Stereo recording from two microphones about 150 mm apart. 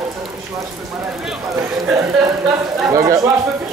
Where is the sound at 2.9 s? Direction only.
20° right (ahead or behind).